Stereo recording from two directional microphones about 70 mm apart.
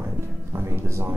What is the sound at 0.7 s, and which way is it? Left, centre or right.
Speech, right.